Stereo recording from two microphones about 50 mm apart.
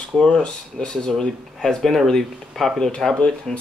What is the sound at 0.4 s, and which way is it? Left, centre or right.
Speech, centre.